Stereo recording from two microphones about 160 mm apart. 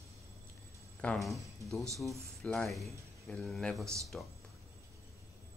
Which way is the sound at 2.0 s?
Centre (ahead or behind).